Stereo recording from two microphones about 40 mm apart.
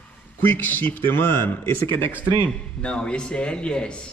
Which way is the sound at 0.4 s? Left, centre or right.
Left.